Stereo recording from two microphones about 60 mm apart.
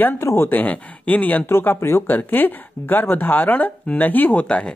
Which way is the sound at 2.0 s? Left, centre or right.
Left.